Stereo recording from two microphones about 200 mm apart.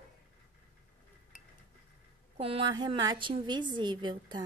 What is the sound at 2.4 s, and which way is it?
A woman's voice, 25° right (ahead or behind).